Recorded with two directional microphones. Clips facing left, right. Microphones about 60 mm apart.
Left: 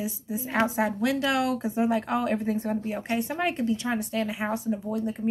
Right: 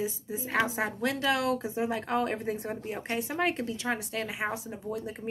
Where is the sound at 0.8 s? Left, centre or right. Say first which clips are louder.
Left 5 dB; right.